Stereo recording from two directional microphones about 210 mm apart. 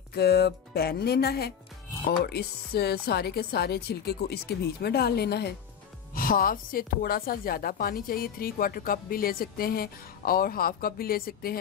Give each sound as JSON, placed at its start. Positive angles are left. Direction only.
{"t": 0.1, "sound": "a woman's voice", "side_deg": 50}